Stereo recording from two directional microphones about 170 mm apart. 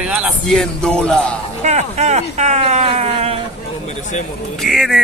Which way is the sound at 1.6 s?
40° right (ahead or behind).